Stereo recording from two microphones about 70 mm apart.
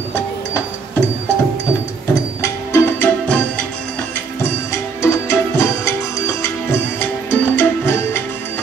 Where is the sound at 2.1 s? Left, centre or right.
Left.